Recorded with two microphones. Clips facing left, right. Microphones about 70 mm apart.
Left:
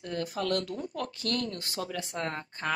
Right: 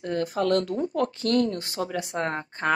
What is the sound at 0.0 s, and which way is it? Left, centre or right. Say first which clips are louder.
Speech: right 7 dB; right.